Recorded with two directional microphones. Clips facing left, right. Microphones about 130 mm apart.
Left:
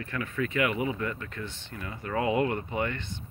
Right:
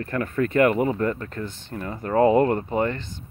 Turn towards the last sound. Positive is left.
turn(degrees=-40)  # may be behind; listen again after turning